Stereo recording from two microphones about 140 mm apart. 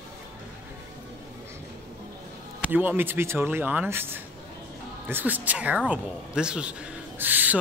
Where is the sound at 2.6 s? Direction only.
15° right (ahead or behind).